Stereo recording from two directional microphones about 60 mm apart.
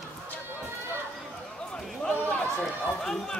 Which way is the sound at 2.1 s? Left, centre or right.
Left.